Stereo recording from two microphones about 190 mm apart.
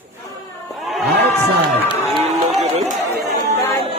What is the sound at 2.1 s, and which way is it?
Run, 30° right (ahead or behind).